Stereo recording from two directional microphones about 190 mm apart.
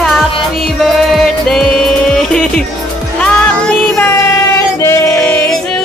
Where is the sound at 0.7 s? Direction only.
Centre (ahead or behind).